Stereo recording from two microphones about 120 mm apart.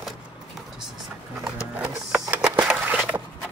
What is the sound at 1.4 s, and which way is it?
Printer, 5° right (ahead or behind).